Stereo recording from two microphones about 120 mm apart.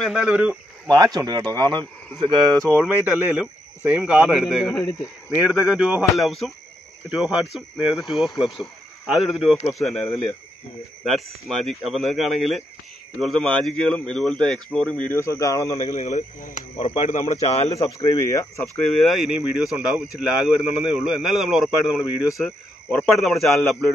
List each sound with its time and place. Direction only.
0.0 s speech: 5° right (ahead or behind)
0.8 s speech: 35° right (ahead or behind)
2.8 s speech: 10° right (ahead or behind)
4.7 s speech: 25° left (ahead or behind)
5.3 s speech: 5° right (ahead or behind)
11.4 s speech: centre (ahead or behind)
15.1 s speech: 25° left (ahead or behind)
15.8 s speech: 65° left (ahead or behind)
16.7 s speech: 45° left (ahead or behind)
17.1 s speech: 60° left (ahead or behind)
17.8 s speech: 25° left (ahead or behind)
18.9 s speech: centre (ahead or behind)